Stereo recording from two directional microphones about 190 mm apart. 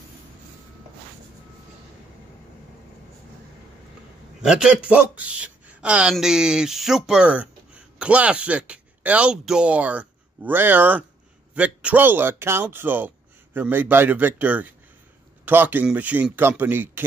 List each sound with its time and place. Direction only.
4.4 s a man's voice: 5° right (ahead or behind)